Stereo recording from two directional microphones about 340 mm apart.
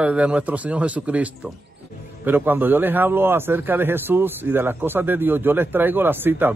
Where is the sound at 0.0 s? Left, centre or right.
Centre.